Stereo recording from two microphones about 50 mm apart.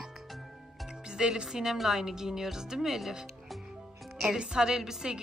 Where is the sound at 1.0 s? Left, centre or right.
Centre.